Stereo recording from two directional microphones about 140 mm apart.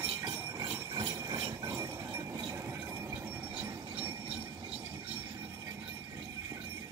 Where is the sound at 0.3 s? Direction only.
25° right (ahead or behind).